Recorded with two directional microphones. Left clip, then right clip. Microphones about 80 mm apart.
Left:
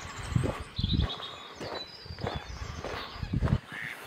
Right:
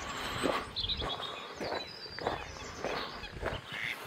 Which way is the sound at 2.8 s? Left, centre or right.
Centre.